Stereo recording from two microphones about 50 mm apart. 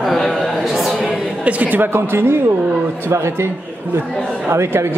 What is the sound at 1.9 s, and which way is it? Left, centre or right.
Speech, right.